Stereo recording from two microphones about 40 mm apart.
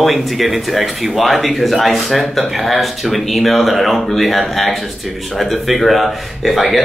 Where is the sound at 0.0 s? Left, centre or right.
Centre.